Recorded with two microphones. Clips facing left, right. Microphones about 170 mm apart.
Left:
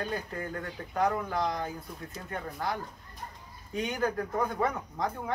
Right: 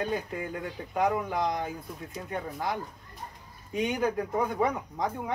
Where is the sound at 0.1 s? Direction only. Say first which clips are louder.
Right 3 dB; 15° right (ahead or behind).